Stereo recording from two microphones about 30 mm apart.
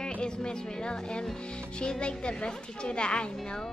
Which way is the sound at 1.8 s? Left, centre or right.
Left.